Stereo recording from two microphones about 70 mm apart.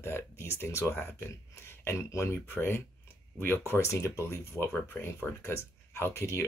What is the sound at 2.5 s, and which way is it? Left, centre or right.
Speech, left.